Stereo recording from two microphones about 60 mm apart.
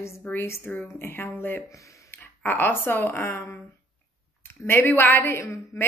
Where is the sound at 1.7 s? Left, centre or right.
Left.